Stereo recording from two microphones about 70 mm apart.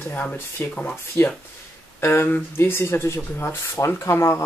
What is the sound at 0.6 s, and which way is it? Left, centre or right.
Speech, left.